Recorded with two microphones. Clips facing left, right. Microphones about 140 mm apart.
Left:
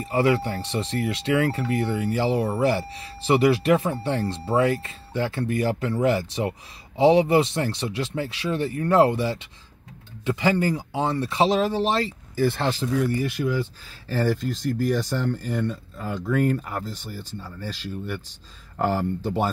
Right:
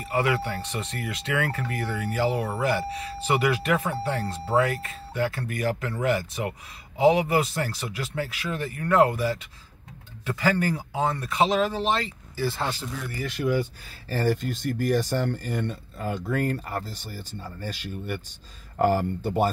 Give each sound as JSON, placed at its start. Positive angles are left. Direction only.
{"t": 0.0, "sound": "speech", "side_deg": 35}
{"t": 12.4, "sound": "speech", "side_deg": 80}
{"t": 13.4, "sound": "speech", "side_deg": 5}
{"t": 14.0, "sound": "speech", "side_deg": -45}